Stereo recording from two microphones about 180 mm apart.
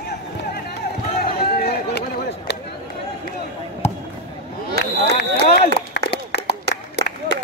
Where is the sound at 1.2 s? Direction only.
60° left (ahead or behind).